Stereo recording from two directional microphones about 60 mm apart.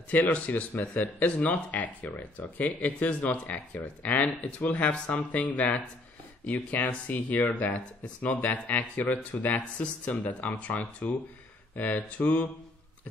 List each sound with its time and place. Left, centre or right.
0.1 s speech: left